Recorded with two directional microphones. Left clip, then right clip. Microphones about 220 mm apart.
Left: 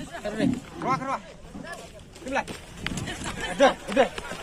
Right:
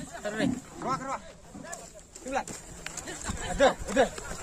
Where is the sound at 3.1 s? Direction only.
55° right (ahead or behind).